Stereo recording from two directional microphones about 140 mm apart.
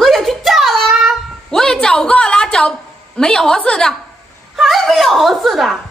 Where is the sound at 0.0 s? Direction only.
Centre (ahead or behind).